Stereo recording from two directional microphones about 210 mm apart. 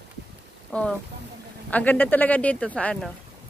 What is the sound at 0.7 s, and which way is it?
A man's voice, 5° left (ahead or behind).